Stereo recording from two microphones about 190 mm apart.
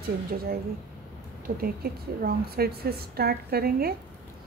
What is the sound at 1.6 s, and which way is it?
A woman's voice, 50° right (ahead or behind).